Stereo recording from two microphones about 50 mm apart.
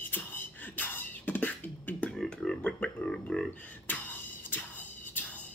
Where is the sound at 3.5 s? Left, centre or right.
Left.